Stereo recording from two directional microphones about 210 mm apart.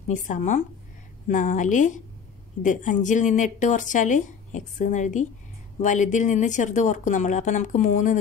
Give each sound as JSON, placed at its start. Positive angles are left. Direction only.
{"t": 0.1, "sound": "speech", "side_deg": 35}